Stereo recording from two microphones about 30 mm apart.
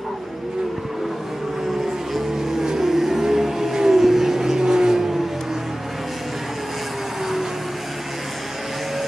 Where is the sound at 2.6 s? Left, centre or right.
Centre.